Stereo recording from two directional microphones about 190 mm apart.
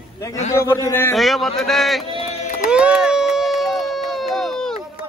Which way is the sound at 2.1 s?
30° left (ahead or behind).